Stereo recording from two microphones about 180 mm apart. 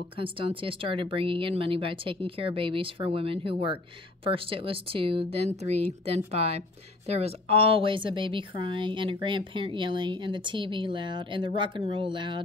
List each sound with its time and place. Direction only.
0.2 s speech: 30° right (ahead or behind)